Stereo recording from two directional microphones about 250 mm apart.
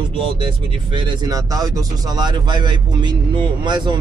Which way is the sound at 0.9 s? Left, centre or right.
Centre.